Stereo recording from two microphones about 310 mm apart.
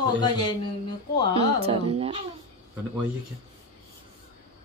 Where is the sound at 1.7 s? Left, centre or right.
Centre.